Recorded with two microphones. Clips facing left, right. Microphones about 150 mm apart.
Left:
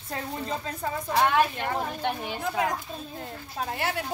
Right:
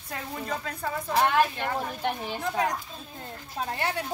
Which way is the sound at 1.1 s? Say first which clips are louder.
Even; 5° left (ahead or behind).